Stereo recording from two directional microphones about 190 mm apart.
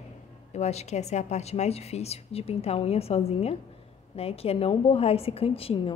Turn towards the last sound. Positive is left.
turn(degrees=30)  # may be behind; listen again after turning